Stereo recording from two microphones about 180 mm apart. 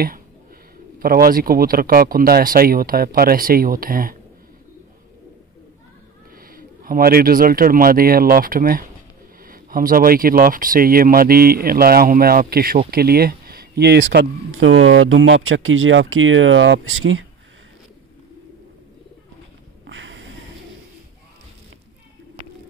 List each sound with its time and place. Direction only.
0.9 s speech: 55° right (ahead or behind)
6.3 s speech: 55° right (ahead or behind); by 17.3 s 90° right
19.9 s snort: 90° right